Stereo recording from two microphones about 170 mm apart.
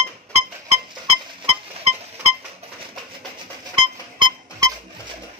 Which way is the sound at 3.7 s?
30° right (ahead or behind).